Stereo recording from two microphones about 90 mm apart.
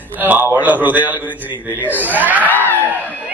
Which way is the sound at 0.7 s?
20° right (ahead or behind).